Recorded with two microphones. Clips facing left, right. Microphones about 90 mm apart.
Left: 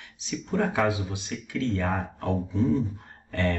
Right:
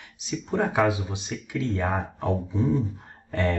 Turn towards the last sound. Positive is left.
turn(degrees=-15)  # may be behind; listen again after turning